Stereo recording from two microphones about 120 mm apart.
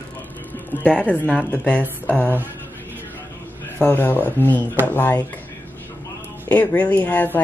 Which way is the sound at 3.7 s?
15° left (ahead or behind).